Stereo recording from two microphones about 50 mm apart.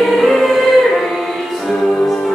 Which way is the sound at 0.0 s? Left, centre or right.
Centre.